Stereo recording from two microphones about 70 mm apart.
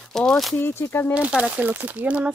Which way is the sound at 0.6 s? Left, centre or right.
Left.